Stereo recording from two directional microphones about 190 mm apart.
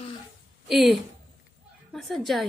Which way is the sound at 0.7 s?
Centre (ahead or behind).